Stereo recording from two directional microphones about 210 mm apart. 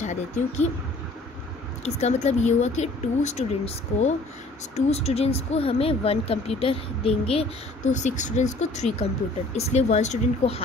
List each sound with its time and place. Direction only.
0.0 s speech: 35° left (ahead or behind)
2.0 s speech: 30° left (ahead or behind)